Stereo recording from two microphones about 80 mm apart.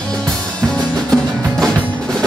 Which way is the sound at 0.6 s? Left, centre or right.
Centre.